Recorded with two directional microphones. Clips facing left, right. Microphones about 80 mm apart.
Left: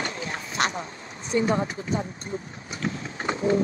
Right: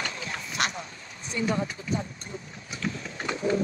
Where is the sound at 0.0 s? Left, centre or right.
Left.